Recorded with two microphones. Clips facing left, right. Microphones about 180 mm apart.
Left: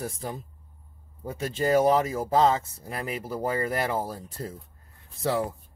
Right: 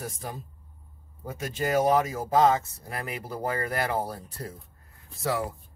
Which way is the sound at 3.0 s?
10° left (ahead or behind).